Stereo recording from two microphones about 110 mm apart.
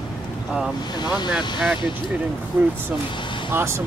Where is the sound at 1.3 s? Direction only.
5° right (ahead or behind).